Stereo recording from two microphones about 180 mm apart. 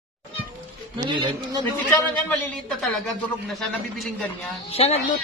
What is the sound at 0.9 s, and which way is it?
Speech, 25° right (ahead or behind).